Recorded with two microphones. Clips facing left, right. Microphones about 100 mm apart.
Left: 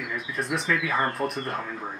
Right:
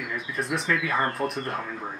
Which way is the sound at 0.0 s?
Centre (ahead or behind).